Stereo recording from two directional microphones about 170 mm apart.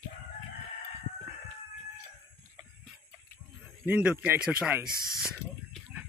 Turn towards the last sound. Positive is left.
turn(degrees=0)  # may be behind; listen again after turning